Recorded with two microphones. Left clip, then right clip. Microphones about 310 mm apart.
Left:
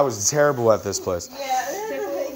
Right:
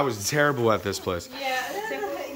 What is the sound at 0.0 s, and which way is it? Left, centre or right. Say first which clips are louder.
Speech: left 4 dB; centre.